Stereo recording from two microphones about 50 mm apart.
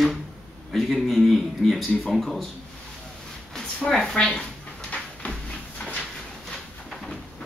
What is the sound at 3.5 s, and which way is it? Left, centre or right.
Speech, centre.